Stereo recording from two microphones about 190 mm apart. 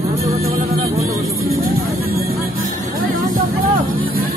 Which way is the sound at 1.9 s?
50° right (ahead or behind).